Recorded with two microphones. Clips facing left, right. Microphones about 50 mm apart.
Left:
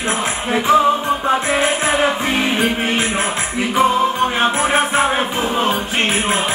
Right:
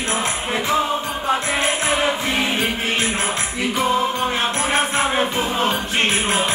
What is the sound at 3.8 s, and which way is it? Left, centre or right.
Music, centre.